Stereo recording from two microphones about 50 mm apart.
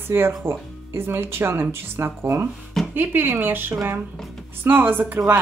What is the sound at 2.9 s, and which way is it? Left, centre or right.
Speech, right.